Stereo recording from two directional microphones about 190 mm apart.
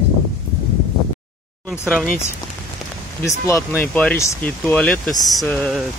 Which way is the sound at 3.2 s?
15° left (ahead or behind).